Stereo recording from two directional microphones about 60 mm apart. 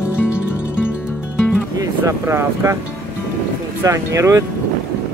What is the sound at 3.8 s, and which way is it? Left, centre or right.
Speech, right.